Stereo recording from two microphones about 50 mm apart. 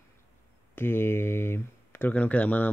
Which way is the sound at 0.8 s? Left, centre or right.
Left.